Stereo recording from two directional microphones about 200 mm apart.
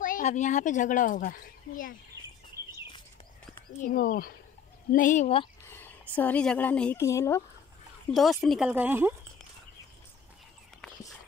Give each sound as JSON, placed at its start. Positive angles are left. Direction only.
{"t": 0.0, "sound": "speech", "side_deg": 40}
{"t": 3.8, "sound": "speech", "side_deg": 45}
{"t": 5.7, "sound": "speech", "side_deg": 10}
{"t": 8.1, "sound": "speech", "side_deg": 0}